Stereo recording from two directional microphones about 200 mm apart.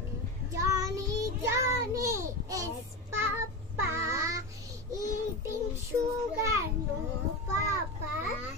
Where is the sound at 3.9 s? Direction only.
15° right (ahead or behind).